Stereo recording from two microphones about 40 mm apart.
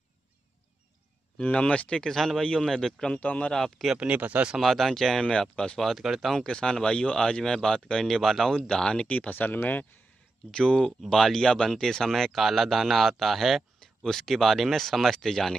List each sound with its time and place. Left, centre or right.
1.5 s speech: left
2.0 s speech: centre
3.2 s speech: left
3.5 s speech: centre
4.6 s speech: centre
5.4 s speech: left
5.8 s speech: centre
6.3 s speech: left; by 8.5 s centre
8.5 s speech: centre
9.0 s speech: left
9.3 s speech: left
10.5 s speech: centre
11.0 s speech: centre
14.0 s speech: centre